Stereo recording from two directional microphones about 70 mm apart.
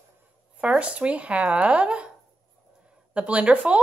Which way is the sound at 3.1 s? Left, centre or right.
Centre.